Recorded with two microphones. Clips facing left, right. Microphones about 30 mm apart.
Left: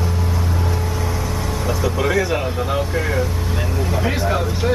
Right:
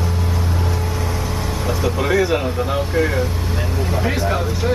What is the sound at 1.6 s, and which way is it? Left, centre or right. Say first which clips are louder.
Speech: even; centre.